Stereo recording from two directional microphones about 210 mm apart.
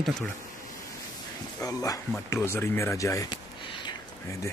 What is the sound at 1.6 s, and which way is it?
Speech, 15° left (ahead or behind).